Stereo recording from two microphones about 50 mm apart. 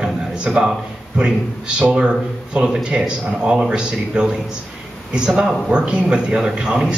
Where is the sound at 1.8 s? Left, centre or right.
Right.